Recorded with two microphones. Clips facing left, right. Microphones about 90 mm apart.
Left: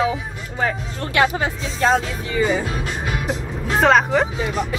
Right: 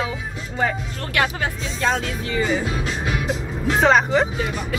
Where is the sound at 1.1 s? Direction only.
25° left (ahead or behind).